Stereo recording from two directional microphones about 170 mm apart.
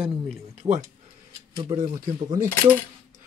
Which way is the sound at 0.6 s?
25° right (ahead or behind).